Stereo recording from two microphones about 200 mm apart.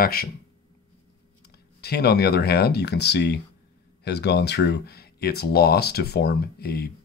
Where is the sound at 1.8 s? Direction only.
55° left (ahead or behind).